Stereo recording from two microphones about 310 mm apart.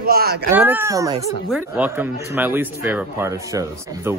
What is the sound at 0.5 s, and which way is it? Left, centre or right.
Speech, centre.